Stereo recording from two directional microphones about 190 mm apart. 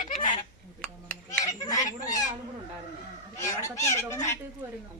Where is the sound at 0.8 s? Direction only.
5° left (ahead or behind).